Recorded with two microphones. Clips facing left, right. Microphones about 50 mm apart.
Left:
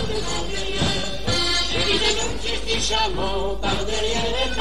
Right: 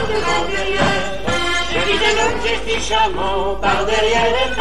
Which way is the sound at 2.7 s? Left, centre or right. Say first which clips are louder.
Right 5 dB; right.